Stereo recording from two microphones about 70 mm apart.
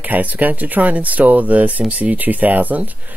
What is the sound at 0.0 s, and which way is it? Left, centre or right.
Speech, right.